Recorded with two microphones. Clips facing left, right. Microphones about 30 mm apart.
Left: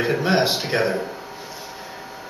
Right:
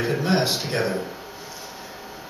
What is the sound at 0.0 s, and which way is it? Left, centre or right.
A man's voice, centre.